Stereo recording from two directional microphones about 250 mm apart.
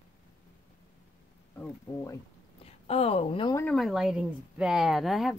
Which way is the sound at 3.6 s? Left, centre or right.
Centre.